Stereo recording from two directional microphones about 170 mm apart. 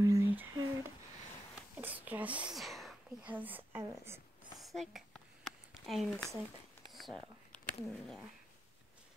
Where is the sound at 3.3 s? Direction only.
10° right (ahead or behind).